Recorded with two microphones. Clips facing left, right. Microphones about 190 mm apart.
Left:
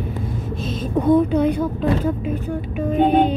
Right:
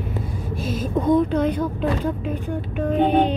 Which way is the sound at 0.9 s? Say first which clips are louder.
Left 3 dB; 10° left (ahead or behind).